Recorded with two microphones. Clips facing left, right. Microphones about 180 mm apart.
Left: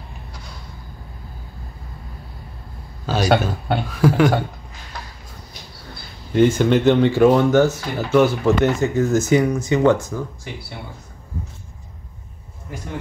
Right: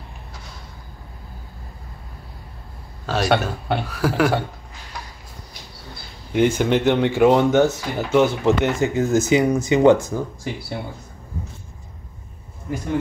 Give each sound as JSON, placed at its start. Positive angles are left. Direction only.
{"t": 3.1, "sound": "speech", "side_deg": 0}
{"t": 6.3, "sound": "speech", "side_deg": -10}